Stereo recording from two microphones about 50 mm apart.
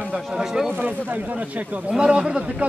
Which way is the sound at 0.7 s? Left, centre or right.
Right.